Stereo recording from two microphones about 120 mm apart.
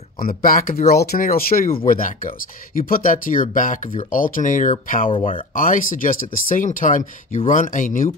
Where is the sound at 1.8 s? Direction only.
90° left.